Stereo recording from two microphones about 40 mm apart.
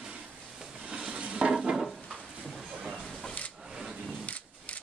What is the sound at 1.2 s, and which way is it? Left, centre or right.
Stir, right.